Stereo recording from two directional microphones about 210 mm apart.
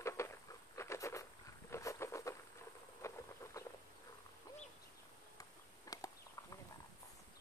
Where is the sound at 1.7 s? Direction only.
15° left (ahead or behind).